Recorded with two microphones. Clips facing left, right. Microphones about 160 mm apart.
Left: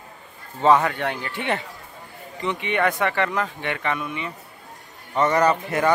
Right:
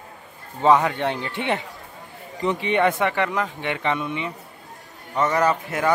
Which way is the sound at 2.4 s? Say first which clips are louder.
Right 3 dB; 35° right (ahead or behind).